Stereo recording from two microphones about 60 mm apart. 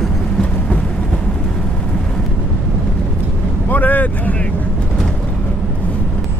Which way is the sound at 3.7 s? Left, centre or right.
Left.